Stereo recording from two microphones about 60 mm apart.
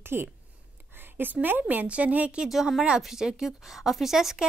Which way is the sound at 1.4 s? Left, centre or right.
Right.